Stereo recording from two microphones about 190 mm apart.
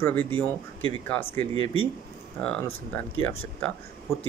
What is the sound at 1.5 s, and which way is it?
Speech, 30° right (ahead or behind).